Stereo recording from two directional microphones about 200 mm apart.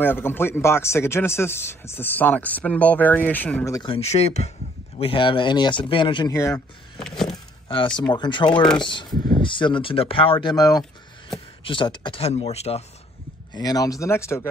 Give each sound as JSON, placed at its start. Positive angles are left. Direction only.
{"t": 0.0, "sound": "speech", "side_deg": 10}
{"t": 7.0, "sound": "a sound", "side_deg": 0}
{"t": 7.2, "sound": "vehicle", "side_deg": 25}
{"t": 8.1, "sound": "speech", "side_deg": 25}
{"t": 13.6, "sound": "speech", "side_deg": 20}